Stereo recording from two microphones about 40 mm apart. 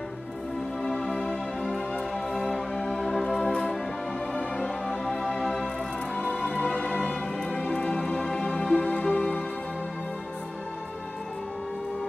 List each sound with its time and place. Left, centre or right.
0.8 s music: centre
6.4 s music: left
7.0 s music: centre